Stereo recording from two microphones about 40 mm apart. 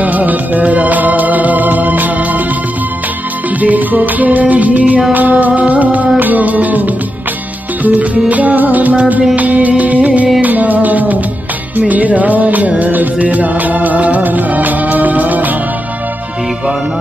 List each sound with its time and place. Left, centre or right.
0.0 s music: right
3.6 s music: right